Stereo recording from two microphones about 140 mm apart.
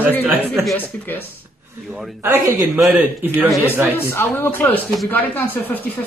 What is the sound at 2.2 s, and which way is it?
Speech, 15° right (ahead or behind).